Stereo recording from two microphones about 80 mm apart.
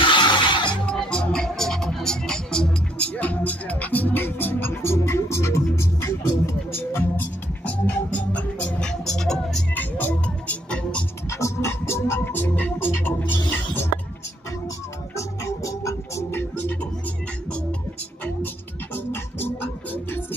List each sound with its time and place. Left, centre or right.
0.0 s music: left
0.7 s music: centre; by 7.2 s left
7.6 s music: centre
9.8 s music: left
11.2 s music: left
15.1 s music: left
17.5 s music: centre
18.9 s music: left